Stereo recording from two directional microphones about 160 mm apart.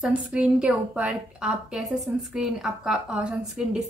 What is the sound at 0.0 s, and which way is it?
A woman's voice, 10° right (ahead or behind).